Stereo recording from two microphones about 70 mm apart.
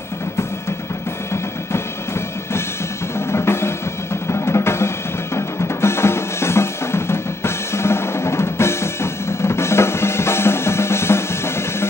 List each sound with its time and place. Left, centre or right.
1.3 s music: left
3.2 s drum: left